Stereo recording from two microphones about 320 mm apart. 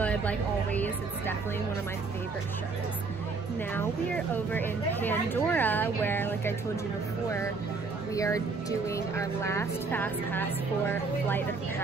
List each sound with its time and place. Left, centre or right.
0.0 s a woman's voice: centre
4.5 s speech: centre
8.1 s a woman's voice: centre